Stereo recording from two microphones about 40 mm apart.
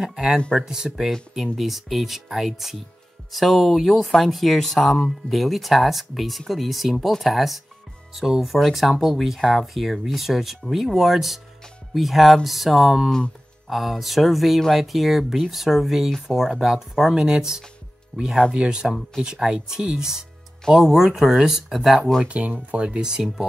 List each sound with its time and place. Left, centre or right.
0.0 s speech: centre
9.4 s speech: centre
19.8 s speech: right
20.7 s speech: centre
22.2 s speech: right
22.8 s speech: right